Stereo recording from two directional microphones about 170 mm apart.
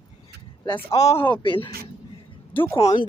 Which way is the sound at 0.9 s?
40° left (ahead or behind).